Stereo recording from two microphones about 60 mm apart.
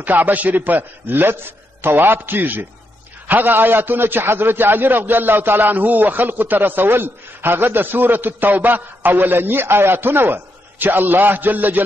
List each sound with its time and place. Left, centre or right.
0.0 s a man's voice: right